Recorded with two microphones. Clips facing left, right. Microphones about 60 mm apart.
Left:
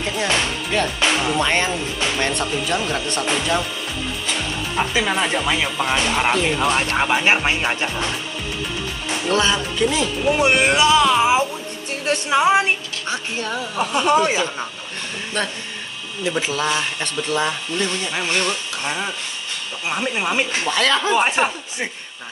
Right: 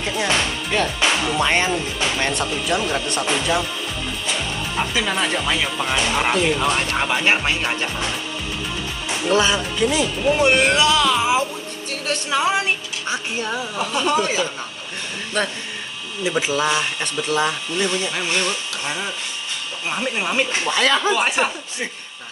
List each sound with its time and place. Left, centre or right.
0.0 s speech: centre
5.0 s speech: centre
9.3 s speech: centre
10.4 s speech: centre
11.9 s speech: left
13.1 s speech: centre
13.9 s speech: left
15.4 s speech: centre
18.1 s speech: centre
20.7 s speech: centre
21.4 s speech: centre